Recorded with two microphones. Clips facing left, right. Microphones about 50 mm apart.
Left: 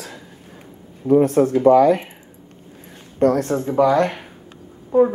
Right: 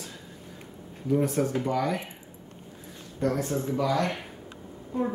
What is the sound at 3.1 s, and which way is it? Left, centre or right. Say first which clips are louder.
Speech: left 10 dB; left.